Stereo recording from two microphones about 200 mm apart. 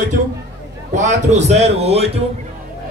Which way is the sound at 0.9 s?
35° right (ahead or behind).